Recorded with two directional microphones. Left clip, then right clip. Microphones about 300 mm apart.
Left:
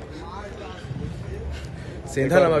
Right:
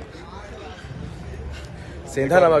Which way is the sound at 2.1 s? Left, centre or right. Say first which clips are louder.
Right 2 dB; centre.